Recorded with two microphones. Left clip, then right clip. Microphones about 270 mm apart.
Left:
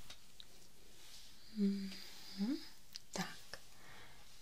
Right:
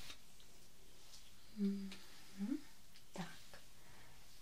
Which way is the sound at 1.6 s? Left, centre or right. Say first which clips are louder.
Left 4 dB; left.